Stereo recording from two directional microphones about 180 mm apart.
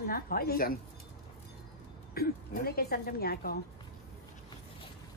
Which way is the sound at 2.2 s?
60° left (ahead or behind).